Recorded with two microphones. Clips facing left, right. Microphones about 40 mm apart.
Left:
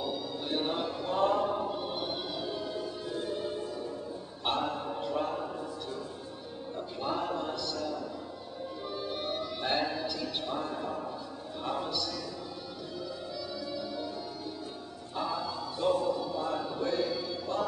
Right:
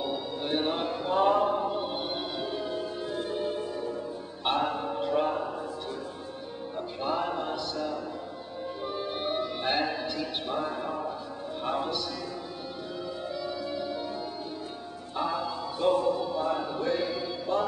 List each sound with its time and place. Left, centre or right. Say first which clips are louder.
0.0 s music: right 3 dB; right
7.0 s a sound: right 3 dB; right
8.8 s music: right 4 dB; right
11.6 s a sound: right 3 dB; right
13.3 s organ: right 4 dB; right
15.1 s music: right 3 dB; right